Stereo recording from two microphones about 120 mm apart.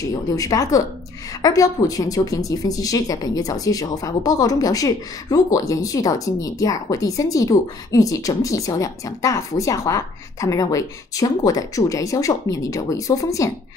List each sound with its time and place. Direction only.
0.1 s a woman's voice: 30° left (ahead or behind)